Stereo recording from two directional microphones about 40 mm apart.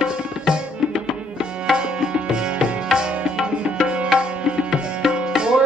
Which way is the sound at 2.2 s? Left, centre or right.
Centre.